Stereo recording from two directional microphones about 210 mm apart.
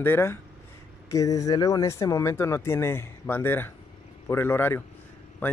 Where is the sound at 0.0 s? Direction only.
10° left (ahead or behind).